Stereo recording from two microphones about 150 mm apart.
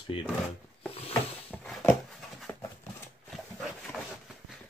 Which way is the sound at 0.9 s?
40° left (ahead or behind).